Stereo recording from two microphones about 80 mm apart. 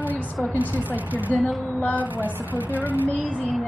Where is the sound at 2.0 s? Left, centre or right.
Right.